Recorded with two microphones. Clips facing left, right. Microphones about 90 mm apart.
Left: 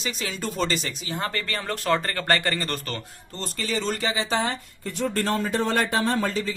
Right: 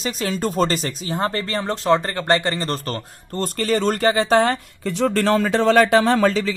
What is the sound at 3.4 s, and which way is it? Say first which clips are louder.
Speech: right 8 dB; 55° right (ahead or behind).